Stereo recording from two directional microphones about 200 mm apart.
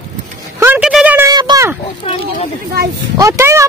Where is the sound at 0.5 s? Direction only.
10° right (ahead or behind).